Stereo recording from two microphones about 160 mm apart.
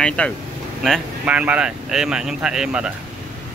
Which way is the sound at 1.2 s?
10° right (ahead or behind).